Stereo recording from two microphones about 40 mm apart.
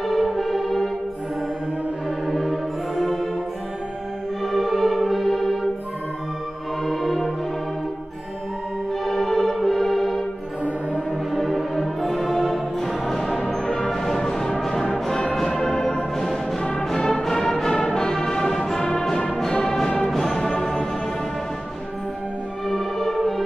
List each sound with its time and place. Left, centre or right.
0.0 s music: centre
2.0 s music: centre
4.5 s music: centre
6.8 s music: centre
9.0 s music: centre
11.3 s music: centre
19.5 s brass instrument: centre
20.0 s music: centre
22.7 s music: centre